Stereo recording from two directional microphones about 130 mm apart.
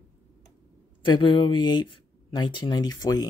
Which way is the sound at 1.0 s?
40° left (ahead or behind).